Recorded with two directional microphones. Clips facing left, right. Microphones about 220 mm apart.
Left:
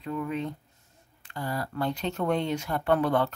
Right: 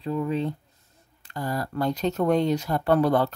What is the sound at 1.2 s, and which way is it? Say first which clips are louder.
Speech: right 3 dB; 40° right (ahead or behind).